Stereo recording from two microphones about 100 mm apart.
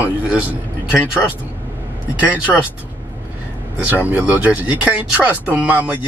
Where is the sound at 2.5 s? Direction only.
10° left (ahead or behind).